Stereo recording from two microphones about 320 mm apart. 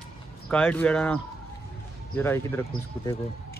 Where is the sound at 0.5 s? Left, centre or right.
Centre.